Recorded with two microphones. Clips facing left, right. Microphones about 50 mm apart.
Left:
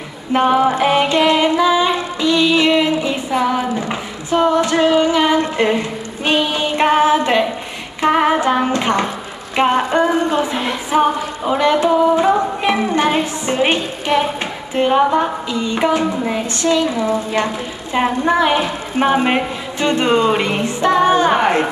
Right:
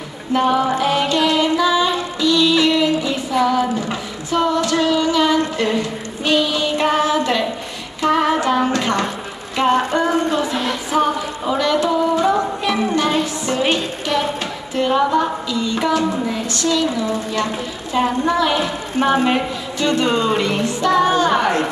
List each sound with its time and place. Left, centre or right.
0.3 s music: left
8.0 s a sound: left
12.9 s music: left
14.8 s a woman's voice: left